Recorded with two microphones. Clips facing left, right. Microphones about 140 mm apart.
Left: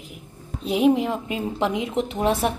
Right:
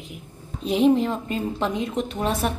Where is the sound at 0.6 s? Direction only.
5° left (ahead or behind).